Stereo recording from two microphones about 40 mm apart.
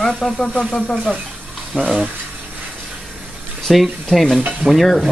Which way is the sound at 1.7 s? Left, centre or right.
Right.